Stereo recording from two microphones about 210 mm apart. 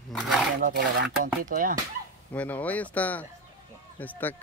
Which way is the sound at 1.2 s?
40° right (ahead or behind).